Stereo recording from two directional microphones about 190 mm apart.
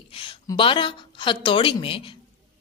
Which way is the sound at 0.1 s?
25° left (ahead or behind).